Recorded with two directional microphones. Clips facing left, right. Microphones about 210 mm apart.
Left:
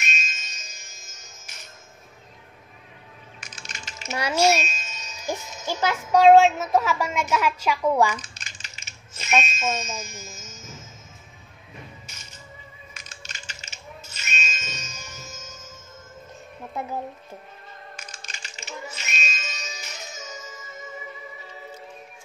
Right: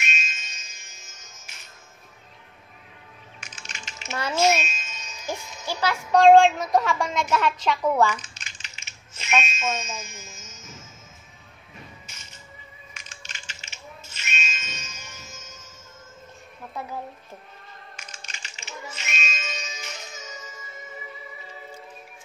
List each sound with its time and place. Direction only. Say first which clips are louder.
0.0 s music: even; 40° left (ahead or behind)
3.3 s typing: left 1 dB; 40° left (ahead or behind)
4.1 s a woman's voice: left 1 dB; 15° left (ahead or behind)
4.6 s music: left 1 dB; 40° left (ahead or behind)
5.2 s speech: left 2 dB; 20° left (ahead or behind)
6.1 s a woman's voice: even; 5° left (ahead or behind)
8.2 s bicycle bell: left 2 dB; 40° left (ahead or behind)
12.9 s music: left 2 dB; 40° left (ahead or behind)
17.9 s music: left 2 dB; 40° left (ahead or behind)